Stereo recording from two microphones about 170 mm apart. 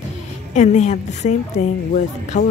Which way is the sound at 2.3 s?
45° left (ahead or behind).